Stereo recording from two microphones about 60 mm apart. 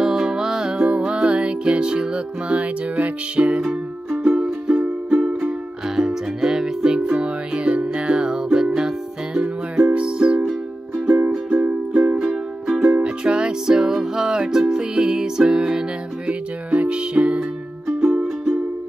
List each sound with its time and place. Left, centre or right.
0.0 s music: centre; by 11.7 s right
11.9 s music: centre
18.2 s music: centre